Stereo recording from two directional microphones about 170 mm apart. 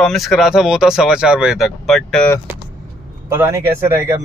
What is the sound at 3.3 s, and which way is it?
Speech, 15° right (ahead or behind).